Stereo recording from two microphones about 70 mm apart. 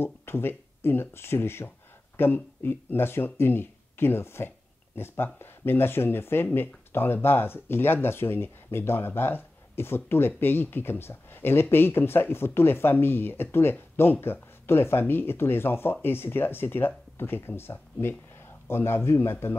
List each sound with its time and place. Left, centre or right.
0.0 s speech: left